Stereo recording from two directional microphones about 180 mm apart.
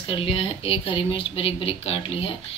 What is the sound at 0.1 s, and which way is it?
A woman's voice, 30° left (ahead or behind).